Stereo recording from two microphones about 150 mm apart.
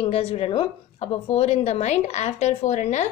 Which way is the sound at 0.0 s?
40° left (ahead or behind).